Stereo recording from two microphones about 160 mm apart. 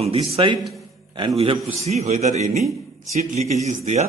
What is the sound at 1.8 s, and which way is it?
Speech, 45° right (ahead or behind).